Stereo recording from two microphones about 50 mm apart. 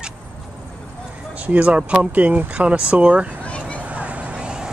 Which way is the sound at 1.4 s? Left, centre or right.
Right.